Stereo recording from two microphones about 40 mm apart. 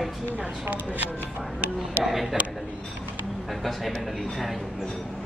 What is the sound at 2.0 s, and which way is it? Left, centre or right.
Speech, centre.